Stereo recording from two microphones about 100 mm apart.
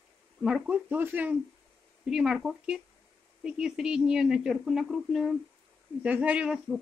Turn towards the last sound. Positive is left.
turn(degrees=-5)  # may be behind; listen again after turning